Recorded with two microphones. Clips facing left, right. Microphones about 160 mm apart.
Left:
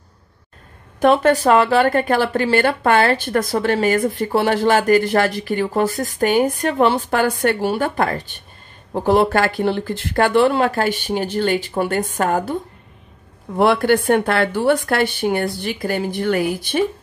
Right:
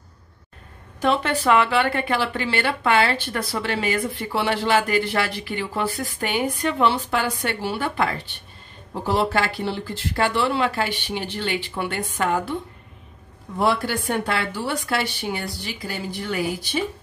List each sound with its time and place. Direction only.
0.9 s speech: 50° left (ahead or behind)
13.6 s speech: 60° left (ahead or behind)